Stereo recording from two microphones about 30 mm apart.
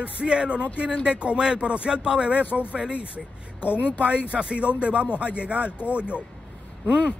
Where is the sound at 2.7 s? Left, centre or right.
Right.